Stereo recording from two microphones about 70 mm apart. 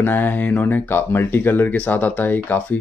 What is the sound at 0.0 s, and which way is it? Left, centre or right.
Speech, left.